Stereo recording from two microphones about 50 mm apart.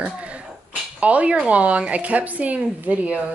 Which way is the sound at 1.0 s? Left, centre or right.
Right.